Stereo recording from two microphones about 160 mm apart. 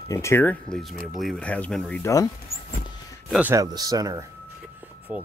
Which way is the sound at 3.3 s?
5° right (ahead or behind).